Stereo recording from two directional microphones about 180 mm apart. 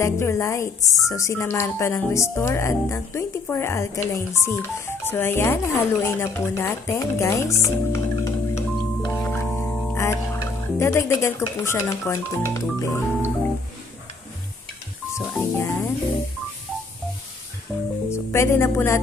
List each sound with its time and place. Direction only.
0.0 s speech: 15° left (ahead or behind)
15.5 s speech: 15° left (ahead or behind)
18.1 s speech: 15° left (ahead or behind)